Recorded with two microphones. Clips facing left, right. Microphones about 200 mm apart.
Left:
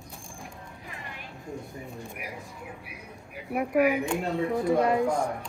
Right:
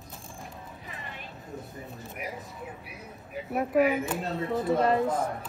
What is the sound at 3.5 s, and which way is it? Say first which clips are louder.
Speech: even; 15° left (ahead or behind).